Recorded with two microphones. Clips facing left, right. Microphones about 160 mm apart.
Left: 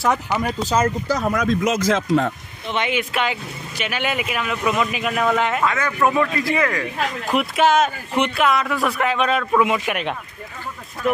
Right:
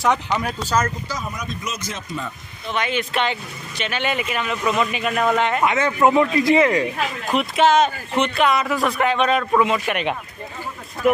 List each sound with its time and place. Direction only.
0.0 s speech: 5° left (ahead or behind)
0.6 s speech: 20° left (ahead or behind)
1.0 s speech: 65° left (ahead or behind); by 2.3 s 85° left
2.9 s speech: 5° left (ahead or behind)
5.6 s speech: 20° right (ahead or behind)
7.3 s speech: 5° left (ahead or behind)